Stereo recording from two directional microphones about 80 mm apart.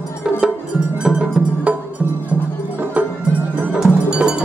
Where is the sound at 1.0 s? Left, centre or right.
Centre.